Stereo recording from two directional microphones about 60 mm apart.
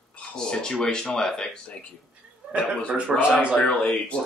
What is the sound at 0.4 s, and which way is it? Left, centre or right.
Speech, centre.